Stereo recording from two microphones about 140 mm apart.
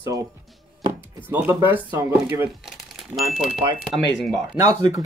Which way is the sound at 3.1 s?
Centre (ahead or behind).